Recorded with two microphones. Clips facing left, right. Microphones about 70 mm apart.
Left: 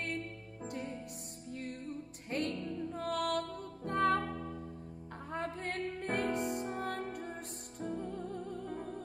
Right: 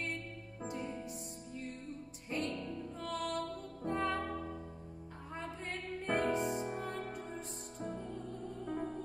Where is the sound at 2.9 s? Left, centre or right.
Left.